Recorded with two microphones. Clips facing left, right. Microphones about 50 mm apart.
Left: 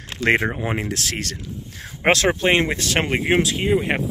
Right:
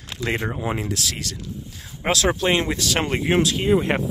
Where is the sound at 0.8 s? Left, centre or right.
Left.